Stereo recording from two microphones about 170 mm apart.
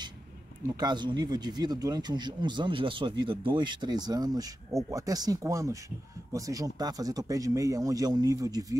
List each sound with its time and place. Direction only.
0.7 s speech: 25° right (ahead or behind)